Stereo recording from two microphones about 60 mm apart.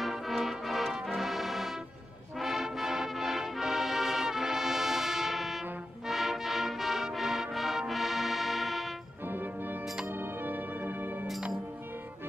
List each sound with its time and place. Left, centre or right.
0.0 s music: centre
9.3 s organ: right
10.1 s music: right